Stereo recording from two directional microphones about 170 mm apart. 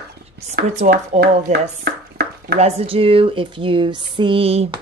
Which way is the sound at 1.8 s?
70° right (ahead or behind).